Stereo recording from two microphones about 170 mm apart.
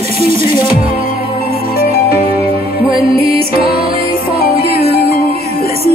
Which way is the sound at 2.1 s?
35° right (ahead or behind).